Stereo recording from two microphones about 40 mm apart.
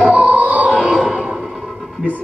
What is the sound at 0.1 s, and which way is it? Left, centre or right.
Music, right.